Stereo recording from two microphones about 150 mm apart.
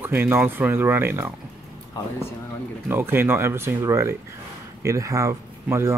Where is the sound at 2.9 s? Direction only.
15° right (ahead or behind).